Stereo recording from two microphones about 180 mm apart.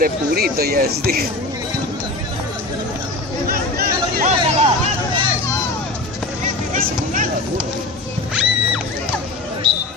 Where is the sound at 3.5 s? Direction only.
55° right (ahead or behind).